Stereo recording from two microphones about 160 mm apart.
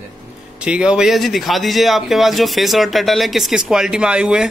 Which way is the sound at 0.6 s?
5° right (ahead or behind).